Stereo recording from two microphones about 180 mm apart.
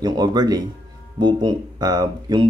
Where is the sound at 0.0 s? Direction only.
20° right (ahead or behind).